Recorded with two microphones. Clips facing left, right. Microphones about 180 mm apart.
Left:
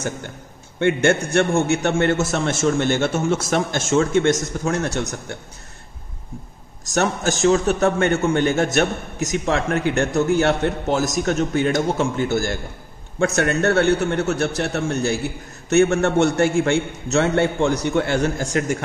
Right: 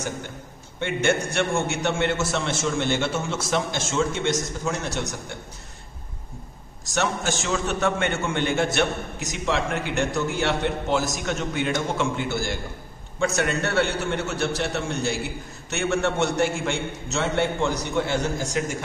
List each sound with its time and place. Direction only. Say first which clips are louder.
0.7 s a man's voice: left 6 dB; 55° left (ahead or behind)
6.9 s a man's voice: left 5 dB; 40° left (ahead or behind)
13.2 s a man's voice: left 5 dB; 55° left (ahead or behind)
15.7 s a man's voice: left 8 dB; 45° left (ahead or behind)